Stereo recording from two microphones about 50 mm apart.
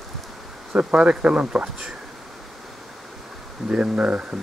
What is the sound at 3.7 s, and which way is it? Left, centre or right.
Speech, centre.